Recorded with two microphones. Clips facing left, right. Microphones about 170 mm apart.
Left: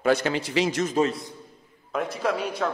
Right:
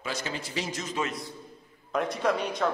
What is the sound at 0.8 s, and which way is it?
Speech, 35° left (ahead or behind).